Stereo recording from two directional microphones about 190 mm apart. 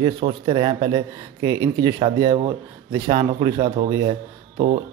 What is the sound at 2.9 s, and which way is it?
Speech, 20° right (ahead or behind).